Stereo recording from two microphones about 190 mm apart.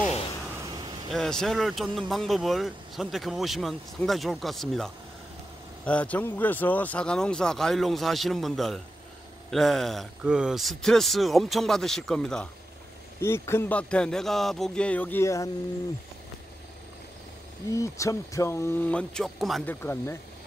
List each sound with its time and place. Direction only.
0.7 s vehicle: 25° right (ahead or behind)
1.1 s speech: centre (ahead or behind)
13.2 s speech: 15° left (ahead or behind)
17.7 s speech: 15° left (ahead or behind); by 19.7 s centre (ahead or behind)
19.7 s speech: 10° left (ahead or behind)